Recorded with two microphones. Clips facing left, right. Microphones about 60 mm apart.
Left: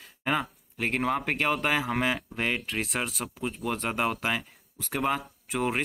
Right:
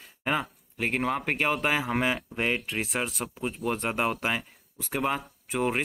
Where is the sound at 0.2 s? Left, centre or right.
Centre.